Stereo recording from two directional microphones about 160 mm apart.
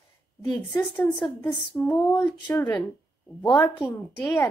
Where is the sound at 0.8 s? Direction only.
10° left (ahead or behind); by 3.8 s 25° left (ahead or behind).